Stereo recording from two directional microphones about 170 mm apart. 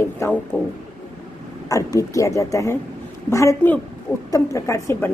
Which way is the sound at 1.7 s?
20° left (ahead or behind).